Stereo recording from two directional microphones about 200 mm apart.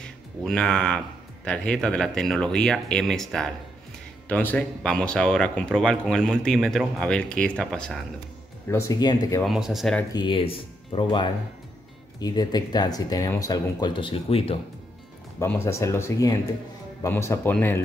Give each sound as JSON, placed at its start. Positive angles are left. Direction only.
{"t": 0.0, "sound": "speech", "side_deg": 5}
{"t": 8.6, "sound": "speech", "side_deg": 15}
{"t": 9.4, "sound": "speech", "side_deg": 0}
{"t": 10.1, "sound": "speech", "side_deg": 25}
{"t": 15.3, "sound": "speech", "side_deg": 15}